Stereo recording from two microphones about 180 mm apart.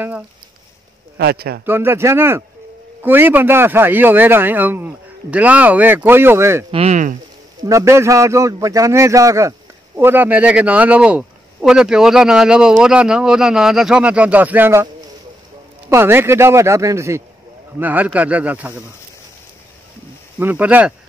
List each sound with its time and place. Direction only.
1.1 s a man's voice: 60° right (ahead or behind)
1.7 s speech: 15° right (ahead or behind)
6.7 s speech: 35° right (ahead or behind)
7.6 s speech: 15° right (ahead or behind)
15.9 s speech: 15° right (ahead or behind)
20.3 s speech: 10° right (ahead or behind)